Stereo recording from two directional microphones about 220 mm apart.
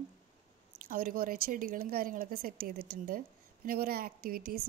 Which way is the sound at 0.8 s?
40° right (ahead or behind).